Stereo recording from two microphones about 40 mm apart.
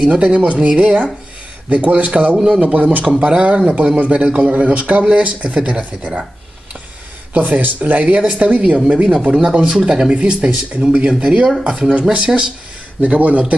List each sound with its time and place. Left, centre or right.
0.0 s a man's voice: right
3.2 s a man's voice: right
7.3 s a man's voice: right
8.7 s speech: right
10.1 s a man's voice: right